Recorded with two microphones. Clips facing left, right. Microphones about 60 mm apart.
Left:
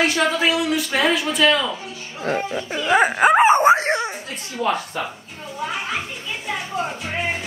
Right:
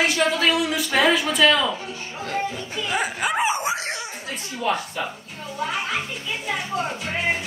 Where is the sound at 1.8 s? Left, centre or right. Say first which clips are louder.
Right 1 dB; right.